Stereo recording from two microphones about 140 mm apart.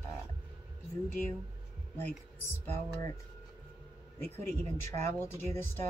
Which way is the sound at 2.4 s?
20° left (ahead or behind).